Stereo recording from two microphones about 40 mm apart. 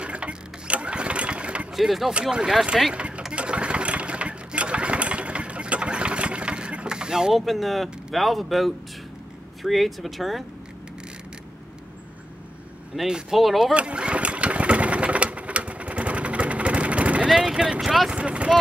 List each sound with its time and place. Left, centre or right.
0.0 s engine: right
1.8 s speech: centre
3.3 s engine: right
6.9 s vehicle: centre
7.3 s speech: centre
13.0 s speech: centre
13.4 s speech: centre
13.7 s sewing machine: right
17.4 s speech: right
18.1 s a sound: right